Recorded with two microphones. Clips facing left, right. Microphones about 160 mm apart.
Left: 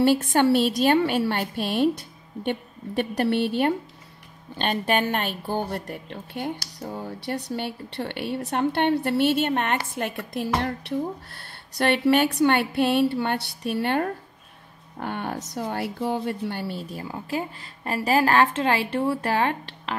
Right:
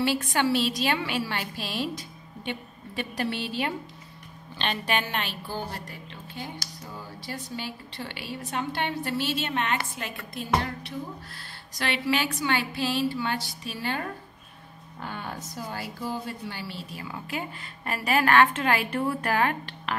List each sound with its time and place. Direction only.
0.0 s a woman's voice: 50° left (ahead or behind); by 11.0 s 65° left (ahead or behind)
11.7 s a woman's voice: 50° left (ahead or behind)
17.0 s a woman's voice: 30° left (ahead or behind)